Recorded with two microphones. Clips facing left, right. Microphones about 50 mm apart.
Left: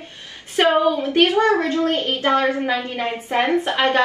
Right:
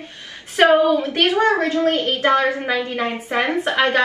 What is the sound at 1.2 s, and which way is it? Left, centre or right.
A woman's voice, right.